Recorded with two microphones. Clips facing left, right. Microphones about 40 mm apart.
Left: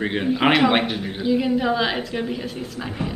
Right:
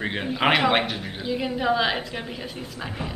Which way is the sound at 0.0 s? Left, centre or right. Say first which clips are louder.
Left 4 dB; centre.